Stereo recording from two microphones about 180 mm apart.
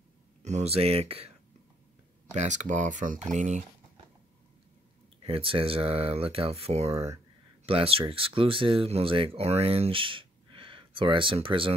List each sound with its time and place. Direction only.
0.4 s speech: 40° right (ahead or behind)
2.3 s speech: 40° right (ahead or behind)
5.2 s speech: 30° right (ahead or behind)
6.9 s speech: 15° right (ahead or behind)
7.6 s speech: 30° right (ahead or behind)